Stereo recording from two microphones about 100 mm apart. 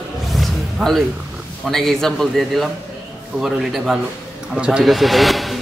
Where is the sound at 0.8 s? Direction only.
Centre (ahead or behind).